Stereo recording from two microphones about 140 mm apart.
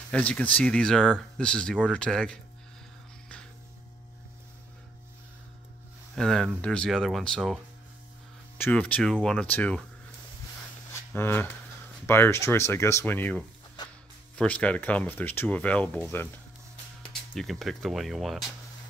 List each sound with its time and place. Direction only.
0.1 s speech: 10° left (ahead or behind)
6.1 s speech: 5° left (ahead or behind)
8.5 s speech: 10° left (ahead or behind)
10.9 s a sound: 15° left (ahead or behind)
12.1 s speech: 20° left (ahead or behind)
17.0 s speech: 5° left (ahead or behind)